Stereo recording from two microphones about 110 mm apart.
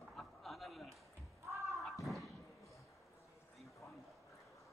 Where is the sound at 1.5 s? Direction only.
30° right (ahead or behind).